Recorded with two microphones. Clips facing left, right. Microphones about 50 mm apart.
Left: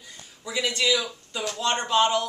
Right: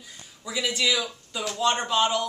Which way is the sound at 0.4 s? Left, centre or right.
Centre.